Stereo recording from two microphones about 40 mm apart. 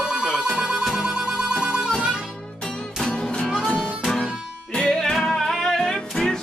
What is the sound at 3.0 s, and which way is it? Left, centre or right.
Music, centre.